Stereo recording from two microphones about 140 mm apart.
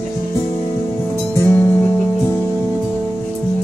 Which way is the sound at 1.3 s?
15° left (ahead or behind).